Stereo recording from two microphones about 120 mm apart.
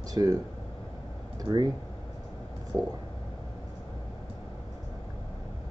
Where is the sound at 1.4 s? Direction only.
35° right (ahead or behind).